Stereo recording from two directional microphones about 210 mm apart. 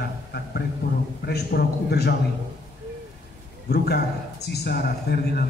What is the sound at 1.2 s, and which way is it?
Speech, 50° left (ahead or behind).